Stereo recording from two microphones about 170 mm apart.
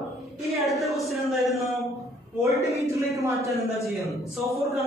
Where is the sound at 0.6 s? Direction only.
Centre (ahead or behind).